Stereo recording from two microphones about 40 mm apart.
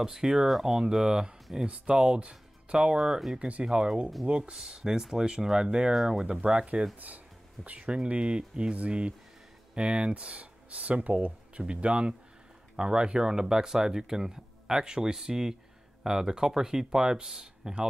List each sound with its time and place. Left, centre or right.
0.0 s speech: centre
1.7 s speech: right
3.6 s speech: right
6.2 s speech: right